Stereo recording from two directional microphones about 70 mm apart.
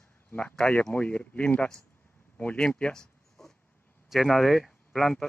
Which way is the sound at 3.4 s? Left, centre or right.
Centre.